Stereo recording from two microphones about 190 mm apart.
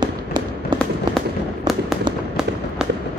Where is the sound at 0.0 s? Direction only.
25° right (ahead or behind).